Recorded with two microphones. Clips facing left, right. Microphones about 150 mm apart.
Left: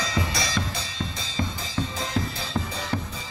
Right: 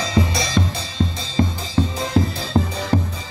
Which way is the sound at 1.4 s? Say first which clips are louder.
Right 9 dB; 45° right (ahead or behind).